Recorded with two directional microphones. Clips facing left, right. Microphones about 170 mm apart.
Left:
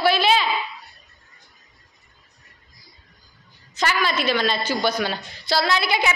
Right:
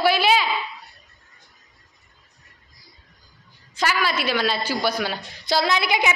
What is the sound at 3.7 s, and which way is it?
A woman's voice, 10° right (ahead or behind).